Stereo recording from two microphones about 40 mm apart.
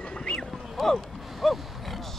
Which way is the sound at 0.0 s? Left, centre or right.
Left.